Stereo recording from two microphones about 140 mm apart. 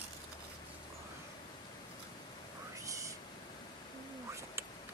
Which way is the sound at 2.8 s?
20° right (ahead or behind).